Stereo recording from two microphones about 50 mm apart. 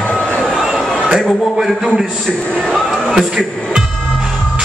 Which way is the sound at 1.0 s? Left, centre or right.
Centre.